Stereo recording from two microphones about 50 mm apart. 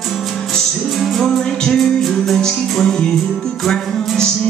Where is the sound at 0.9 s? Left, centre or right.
Centre.